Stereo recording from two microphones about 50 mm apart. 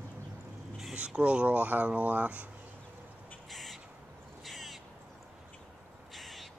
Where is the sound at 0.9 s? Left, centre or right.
Right.